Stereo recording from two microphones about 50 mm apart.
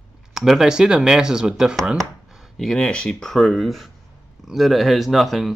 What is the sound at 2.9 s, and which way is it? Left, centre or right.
Speech, centre.